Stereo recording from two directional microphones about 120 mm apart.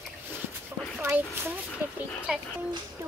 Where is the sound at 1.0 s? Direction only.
20° right (ahead or behind).